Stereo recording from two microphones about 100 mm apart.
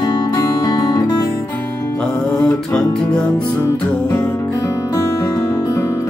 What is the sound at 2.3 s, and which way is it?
Music, 10° left (ahead or behind).